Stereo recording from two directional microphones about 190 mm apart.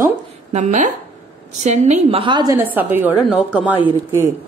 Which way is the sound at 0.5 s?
40° right (ahead or behind).